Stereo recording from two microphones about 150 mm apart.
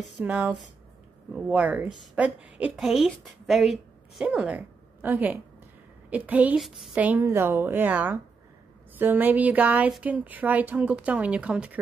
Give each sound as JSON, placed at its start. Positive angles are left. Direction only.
{"t": 0.2, "sound": "a woman's voice", "side_deg": -10}